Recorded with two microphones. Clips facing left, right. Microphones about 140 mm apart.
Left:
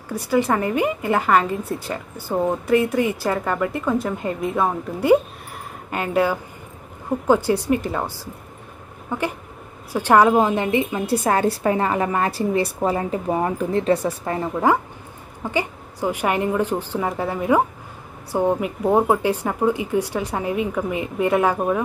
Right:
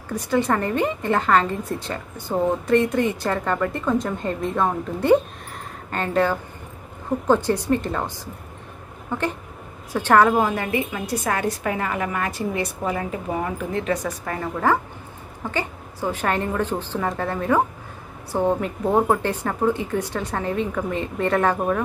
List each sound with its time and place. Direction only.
0.1 s a woman's voice: 10° left (ahead or behind)
9.1 s a woman's voice: 10° left (ahead or behind)